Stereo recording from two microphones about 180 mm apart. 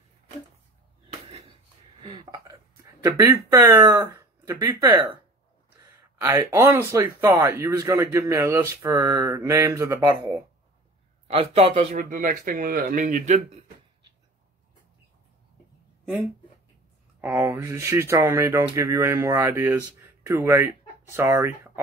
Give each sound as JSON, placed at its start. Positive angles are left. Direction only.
{"t": 2.0, "sound": "speech", "side_deg": -25}
{"t": 11.2, "sound": "a man's voice", "side_deg": -35}
{"t": 17.2, "sound": "speech", "side_deg": -15}